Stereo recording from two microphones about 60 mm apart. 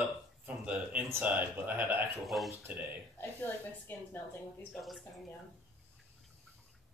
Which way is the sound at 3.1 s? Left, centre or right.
Left.